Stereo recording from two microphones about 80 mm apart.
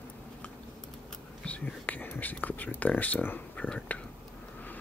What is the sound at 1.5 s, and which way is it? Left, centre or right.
Speech, centre.